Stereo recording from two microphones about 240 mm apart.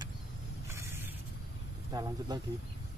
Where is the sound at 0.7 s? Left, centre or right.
Centre.